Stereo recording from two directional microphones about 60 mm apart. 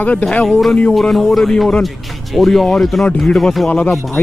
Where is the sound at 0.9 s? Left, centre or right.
Centre.